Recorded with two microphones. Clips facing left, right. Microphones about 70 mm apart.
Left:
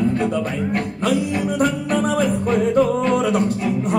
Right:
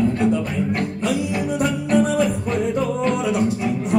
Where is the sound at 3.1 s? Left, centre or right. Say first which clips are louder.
Left 2 dB; left.